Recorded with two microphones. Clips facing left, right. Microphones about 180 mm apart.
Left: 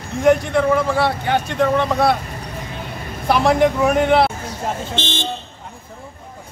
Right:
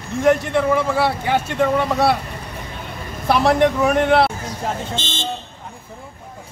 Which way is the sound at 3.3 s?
Centre (ahead or behind).